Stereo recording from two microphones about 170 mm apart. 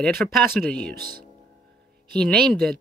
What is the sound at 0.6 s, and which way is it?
Speech, 5° left (ahead or behind).